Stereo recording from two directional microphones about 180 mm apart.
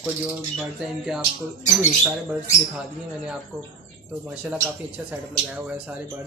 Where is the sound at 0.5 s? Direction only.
Centre (ahead or behind).